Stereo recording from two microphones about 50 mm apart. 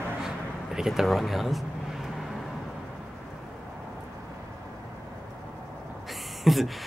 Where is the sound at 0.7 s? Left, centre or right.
Centre.